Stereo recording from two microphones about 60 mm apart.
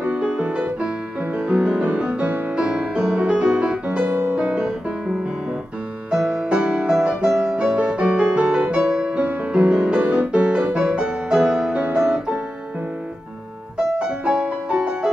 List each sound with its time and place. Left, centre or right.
0.0 s music: centre
6.5 s music: centre
13.9 s music: centre